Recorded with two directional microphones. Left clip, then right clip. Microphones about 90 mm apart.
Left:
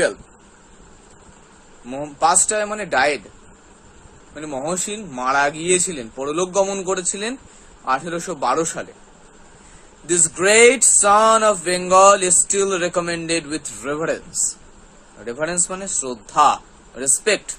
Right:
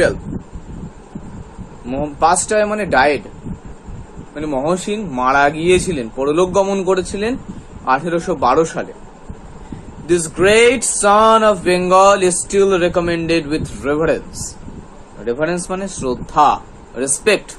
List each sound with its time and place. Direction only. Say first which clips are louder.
1.9 s speech: right 4 dB; 40° left (ahead or behind)
4.4 s speech: right 7 dB; 35° left (ahead or behind)
10.0 s male singing: right 4 dB; 45° left (ahead or behind)
15.2 s speech: right 5 dB; 45° left (ahead or behind); by 17.3 s 30° left (ahead or behind)